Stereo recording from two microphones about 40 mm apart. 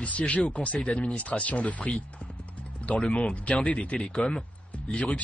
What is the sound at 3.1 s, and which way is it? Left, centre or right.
Speech, left.